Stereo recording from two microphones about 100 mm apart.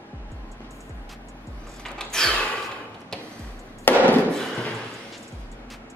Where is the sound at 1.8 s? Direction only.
5° left (ahead or behind).